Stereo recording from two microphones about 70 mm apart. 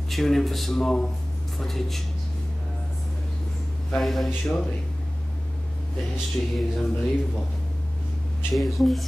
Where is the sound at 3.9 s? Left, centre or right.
Centre.